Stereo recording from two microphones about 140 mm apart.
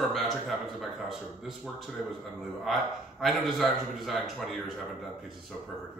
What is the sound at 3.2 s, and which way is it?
A man's voice, centre (ahead or behind).